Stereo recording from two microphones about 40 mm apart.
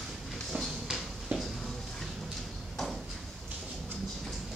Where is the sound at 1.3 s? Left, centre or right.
Right.